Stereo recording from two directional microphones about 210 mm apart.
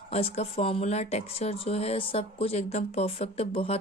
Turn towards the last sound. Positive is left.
turn(degrees=25)  # may be behind; listen again after turning